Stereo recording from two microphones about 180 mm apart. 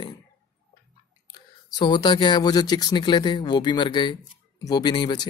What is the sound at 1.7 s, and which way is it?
Speech, 25° left (ahead or behind).